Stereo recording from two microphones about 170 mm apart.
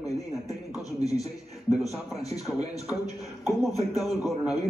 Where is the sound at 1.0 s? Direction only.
20° left (ahead or behind).